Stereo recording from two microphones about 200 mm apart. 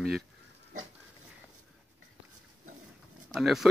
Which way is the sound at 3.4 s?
Centre (ahead or behind).